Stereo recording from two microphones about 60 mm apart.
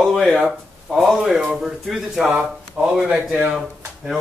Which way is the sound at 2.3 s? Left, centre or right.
Right.